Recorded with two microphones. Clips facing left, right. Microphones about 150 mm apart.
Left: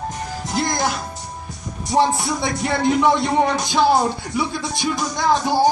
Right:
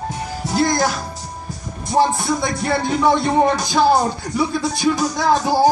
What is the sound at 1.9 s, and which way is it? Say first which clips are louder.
Music: right 1 dB; centre (ahead or behind).